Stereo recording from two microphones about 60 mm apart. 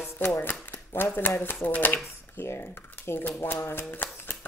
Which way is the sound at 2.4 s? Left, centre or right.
Left.